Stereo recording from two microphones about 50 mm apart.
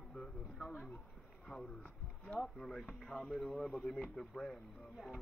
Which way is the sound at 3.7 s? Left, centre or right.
Centre.